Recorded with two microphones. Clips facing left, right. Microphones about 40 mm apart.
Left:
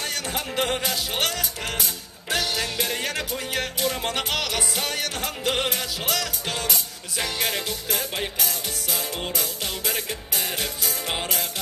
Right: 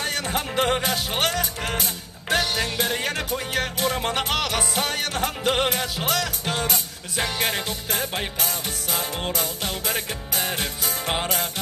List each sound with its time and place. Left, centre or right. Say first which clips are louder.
0.0 s music: right 3 dB; right